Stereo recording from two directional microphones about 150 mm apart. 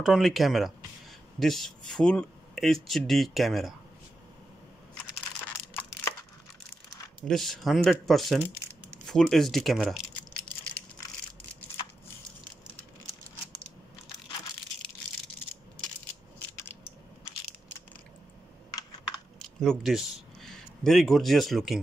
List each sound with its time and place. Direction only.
0.0 s speech: centre (ahead or behind)
5.8 s crushing: 10° left (ahead or behind)
7.2 s speech: centre (ahead or behind)
9.0 s a sound: 5° left (ahead or behind)
18.8 s computer keyboard: 25° left (ahead or behind)
19.3 s speech: 5° left (ahead or behind)